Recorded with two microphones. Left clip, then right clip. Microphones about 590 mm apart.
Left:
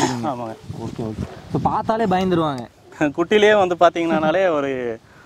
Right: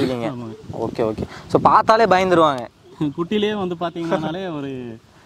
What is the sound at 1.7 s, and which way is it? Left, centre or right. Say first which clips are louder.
Speech: right 5 dB; right.